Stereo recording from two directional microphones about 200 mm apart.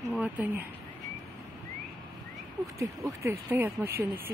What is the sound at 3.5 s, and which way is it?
Speech, 10° right (ahead or behind).